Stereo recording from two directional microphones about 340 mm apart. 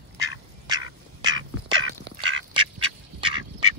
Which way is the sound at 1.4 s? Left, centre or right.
Right.